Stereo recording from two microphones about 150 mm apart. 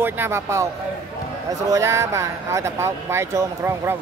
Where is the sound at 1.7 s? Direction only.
20° right (ahead or behind).